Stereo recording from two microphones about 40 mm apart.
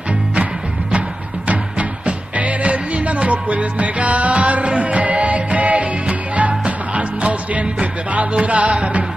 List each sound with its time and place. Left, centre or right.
1.5 s music: right